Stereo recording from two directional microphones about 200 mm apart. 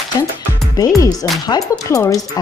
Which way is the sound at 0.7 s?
15° left (ahead or behind).